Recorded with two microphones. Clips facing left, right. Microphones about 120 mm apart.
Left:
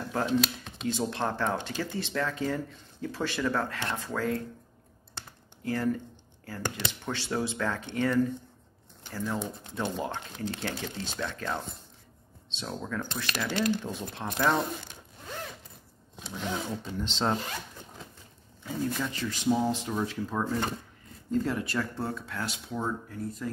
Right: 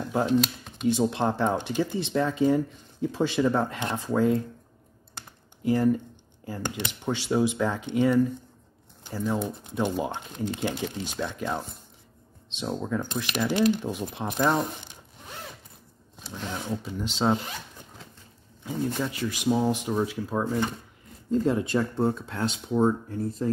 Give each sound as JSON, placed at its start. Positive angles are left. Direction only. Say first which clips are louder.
{"t": 0.3, "sound": "speech", "louder": "right 4 dB", "side_deg": -5}
{"t": 1.1, "sound": "speech", "louder": "right 5 dB", "side_deg": -15}
{"t": 5.1, "sound": "computer keyboard", "louder": "even", "side_deg": -15}
{"t": 6.4, "sound": "speech", "louder": "right 2 dB", "side_deg": -15}
{"t": 16.2, "sound": "speech", "louder": "left 1 dB", "side_deg": -5}
{"t": 18.6, "sound": "speech", "louder": "right 3 dB", "side_deg": -15}